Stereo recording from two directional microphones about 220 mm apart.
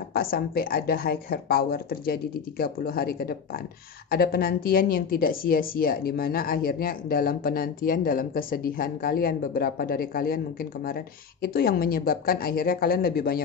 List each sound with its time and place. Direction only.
0.1 s a woman's voice: 45° left (ahead or behind)